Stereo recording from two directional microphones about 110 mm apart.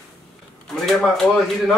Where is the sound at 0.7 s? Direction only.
Centre (ahead or behind).